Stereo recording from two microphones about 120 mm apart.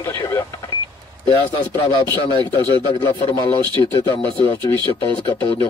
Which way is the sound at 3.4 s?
35° right (ahead or behind).